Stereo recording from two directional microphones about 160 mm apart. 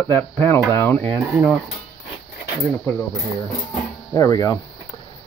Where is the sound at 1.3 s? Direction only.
5° right (ahead or behind).